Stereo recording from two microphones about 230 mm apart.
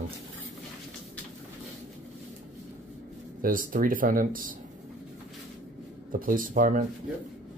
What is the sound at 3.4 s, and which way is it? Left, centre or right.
Speech, right.